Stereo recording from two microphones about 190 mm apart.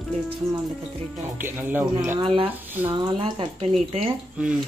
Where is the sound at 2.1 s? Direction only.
25° right (ahead or behind).